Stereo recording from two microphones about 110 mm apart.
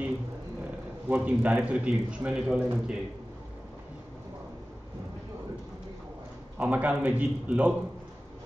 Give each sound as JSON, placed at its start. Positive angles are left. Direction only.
{"t": 1.0, "sound": "a man's voice", "side_deg": -15}
{"t": 6.6, "sound": "a man's voice", "side_deg": -15}